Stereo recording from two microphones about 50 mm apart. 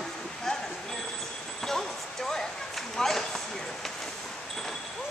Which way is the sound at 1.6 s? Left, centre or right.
Centre.